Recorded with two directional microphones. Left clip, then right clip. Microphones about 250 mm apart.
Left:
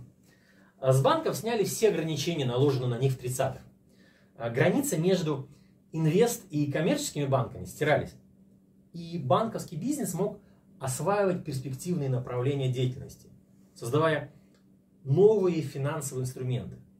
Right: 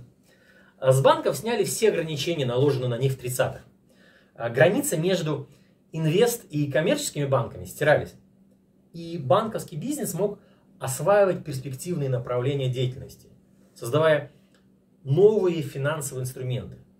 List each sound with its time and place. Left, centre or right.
0.7 s speech: centre
4.5 s speech: centre
10.8 s speech: centre